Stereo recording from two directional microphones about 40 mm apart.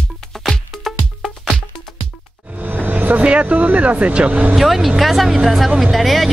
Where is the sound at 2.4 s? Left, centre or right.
Right.